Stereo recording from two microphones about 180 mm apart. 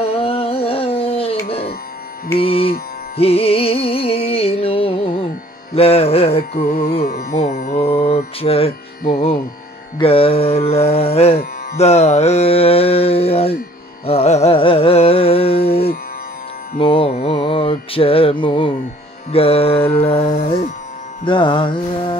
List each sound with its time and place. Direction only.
0.0 s carnatic music: 35° left (ahead or behind)
2.3 s music: 30° left (ahead or behind)
6.5 s music: 55° left (ahead or behind)
7.6 s mantra: 35° left (ahead or behind)
9.9 s music: 30° left (ahead or behind)
16.7 s mantra: 30° left (ahead or behind)
19.3 s music: 30° left (ahead or behind)